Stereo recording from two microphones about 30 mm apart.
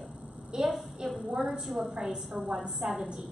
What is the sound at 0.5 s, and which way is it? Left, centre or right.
A woman's voice, centre.